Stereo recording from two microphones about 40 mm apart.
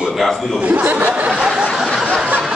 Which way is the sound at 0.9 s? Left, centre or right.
Right.